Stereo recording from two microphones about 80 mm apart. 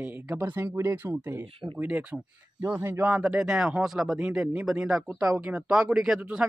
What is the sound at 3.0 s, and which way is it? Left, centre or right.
Speech, centre.